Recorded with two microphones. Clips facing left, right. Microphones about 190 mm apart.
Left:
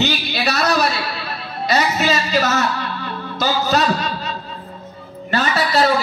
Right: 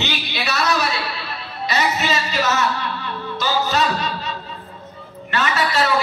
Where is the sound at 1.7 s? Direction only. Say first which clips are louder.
Left 3 dB; 35° left (ahead or behind).